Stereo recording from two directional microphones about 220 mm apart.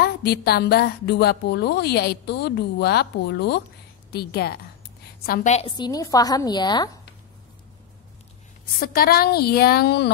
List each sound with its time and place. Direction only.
0.0 s a woman's voice: 45° left (ahead or behind); by 6.9 s 20° left (ahead or behind)
8.7 s a woman's voice: 40° left (ahead or behind)